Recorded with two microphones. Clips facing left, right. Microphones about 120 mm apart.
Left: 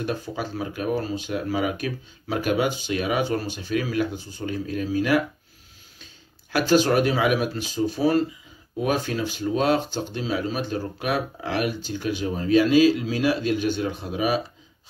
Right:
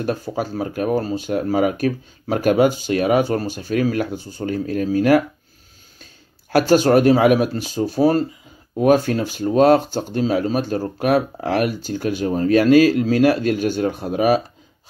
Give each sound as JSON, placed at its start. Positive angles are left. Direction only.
{"t": 0.0, "sound": "speech", "side_deg": -40}
{"t": 6.5, "sound": "speech", "side_deg": -45}